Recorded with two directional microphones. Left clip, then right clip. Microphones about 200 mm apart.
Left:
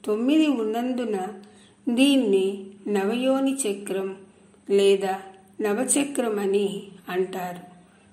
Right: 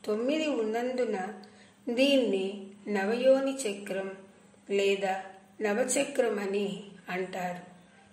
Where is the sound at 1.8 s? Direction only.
30° left (ahead or behind).